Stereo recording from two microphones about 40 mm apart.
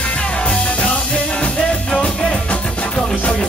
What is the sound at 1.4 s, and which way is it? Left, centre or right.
Music, left.